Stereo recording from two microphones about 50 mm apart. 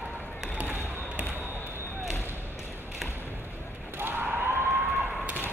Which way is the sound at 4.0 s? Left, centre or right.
Right.